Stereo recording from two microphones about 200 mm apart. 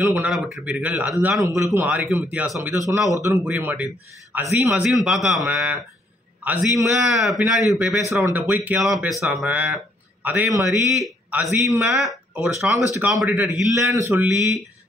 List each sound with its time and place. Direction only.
0.0 s a man's voice: 5° right (ahead or behind)
1.4 s a man's voice: 15° right (ahead or behind)
11.6 s a man's voice: 15° right (ahead or behind)
11.9 s a man's voice: centre (ahead or behind)